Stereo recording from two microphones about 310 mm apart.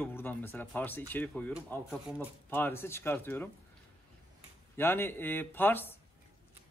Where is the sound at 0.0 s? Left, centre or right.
Centre.